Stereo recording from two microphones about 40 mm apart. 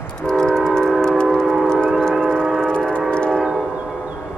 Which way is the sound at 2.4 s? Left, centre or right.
Centre.